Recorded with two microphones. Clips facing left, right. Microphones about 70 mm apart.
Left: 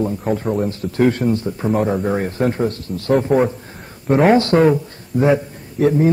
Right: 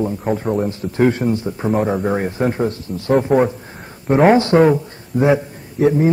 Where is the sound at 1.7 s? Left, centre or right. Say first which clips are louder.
Even; centre.